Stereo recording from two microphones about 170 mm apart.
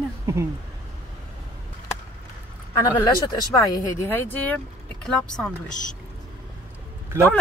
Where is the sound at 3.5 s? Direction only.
15° left (ahead or behind).